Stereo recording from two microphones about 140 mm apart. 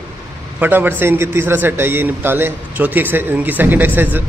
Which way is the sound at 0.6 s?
15° right (ahead or behind).